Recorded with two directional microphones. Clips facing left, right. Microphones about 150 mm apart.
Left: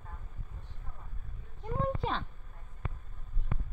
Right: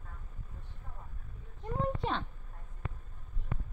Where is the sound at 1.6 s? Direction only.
Centre (ahead or behind).